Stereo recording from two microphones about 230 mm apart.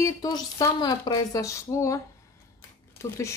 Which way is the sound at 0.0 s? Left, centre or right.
Centre.